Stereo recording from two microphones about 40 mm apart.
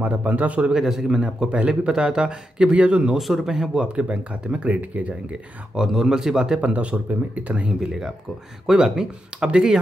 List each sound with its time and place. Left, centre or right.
0.0 s speech: right
0.7 s speech: centre; by 3.2 s right
3.2 s speech: centre
3.4 s speech: centre
3.9 s speech: right
5.8 s speech: centre
6.6 s speech: right
7.8 s speech: centre